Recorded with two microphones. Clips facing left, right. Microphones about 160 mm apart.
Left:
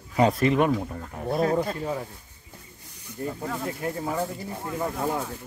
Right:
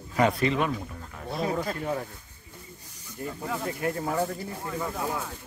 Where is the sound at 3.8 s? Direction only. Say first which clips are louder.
Right 1 dB; 10° left (ahead or behind).